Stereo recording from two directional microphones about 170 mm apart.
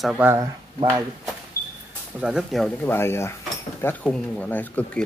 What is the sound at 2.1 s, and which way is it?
Speech, 5° right (ahead or behind).